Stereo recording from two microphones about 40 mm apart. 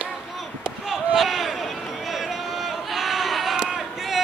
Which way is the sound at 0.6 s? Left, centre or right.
Centre.